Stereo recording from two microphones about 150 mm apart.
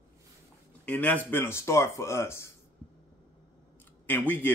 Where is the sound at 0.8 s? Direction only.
10° left (ahead or behind).